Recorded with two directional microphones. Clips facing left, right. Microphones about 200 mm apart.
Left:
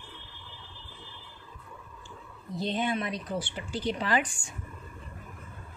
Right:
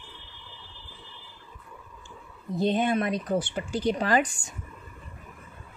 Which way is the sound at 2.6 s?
50° right (ahead or behind).